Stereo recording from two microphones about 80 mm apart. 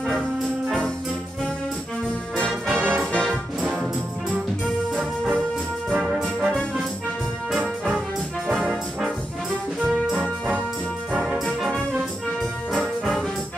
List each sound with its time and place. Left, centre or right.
2.7 s music: right
5.9 s brass instrument: centre
8.5 s brass instrument: centre
11.1 s brass instrument: centre
11.4 s brass instrument: centre